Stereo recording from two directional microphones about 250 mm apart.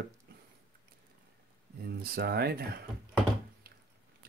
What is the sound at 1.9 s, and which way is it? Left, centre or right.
Speech, right.